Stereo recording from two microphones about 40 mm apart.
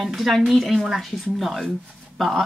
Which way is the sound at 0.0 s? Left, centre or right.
Centre.